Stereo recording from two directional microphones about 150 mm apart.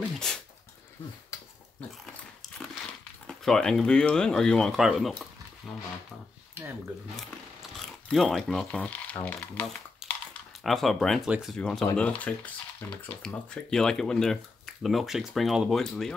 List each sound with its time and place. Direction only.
3.3 s speech: 5° left (ahead or behind)
6.6 s a sound: 15° right (ahead or behind)
8.1 s speech: centre (ahead or behind)